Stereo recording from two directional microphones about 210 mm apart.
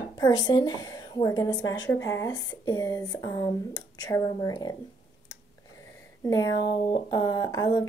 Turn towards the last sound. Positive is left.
turn(degrees=15)  # may be behind; listen again after turning